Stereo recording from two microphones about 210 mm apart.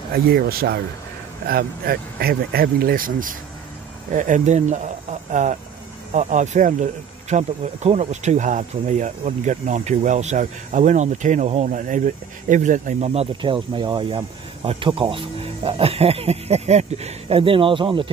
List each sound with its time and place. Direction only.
0.1 s speech: 45° right (ahead or behind); by 18.1 s 25° right (ahead or behind)